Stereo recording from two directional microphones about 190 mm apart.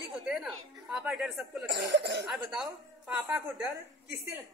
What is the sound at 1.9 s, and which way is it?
Speech, 60° right (ahead or behind).